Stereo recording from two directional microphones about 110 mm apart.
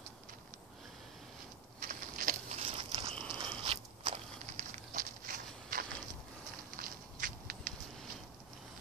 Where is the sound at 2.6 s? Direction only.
55° right (ahead or behind).